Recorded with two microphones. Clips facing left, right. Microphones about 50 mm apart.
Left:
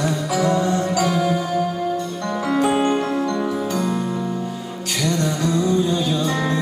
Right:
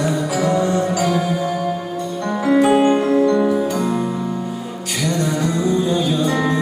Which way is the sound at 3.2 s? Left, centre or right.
Centre.